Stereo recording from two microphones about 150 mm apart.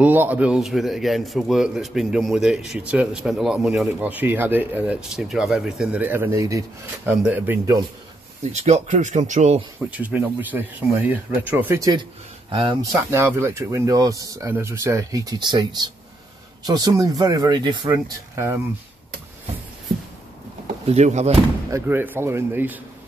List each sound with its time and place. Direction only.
0.0 s a man's voice: 10° right (ahead or behind)
4.1 s speech: 10° right (ahead or behind)
8.5 s speech: 50° right (ahead or behind)
9.8 s speech: 10° right (ahead or behind); by 12.7 s 35° right (ahead or behind)
13.1 s speech: 15° right (ahead or behind)
20.8 s speech: 45° right (ahead or behind)
21.6 s speech: 15° right (ahead or behind)